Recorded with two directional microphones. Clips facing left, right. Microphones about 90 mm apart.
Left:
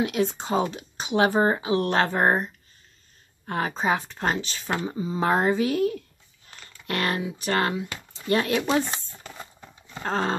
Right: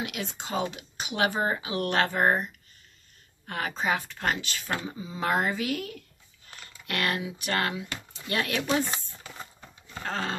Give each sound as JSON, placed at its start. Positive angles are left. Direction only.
{"t": 0.0, "sound": "speech", "side_deg": 35}
{"t": 10.0, "sound": "speech", "side_deg": 35}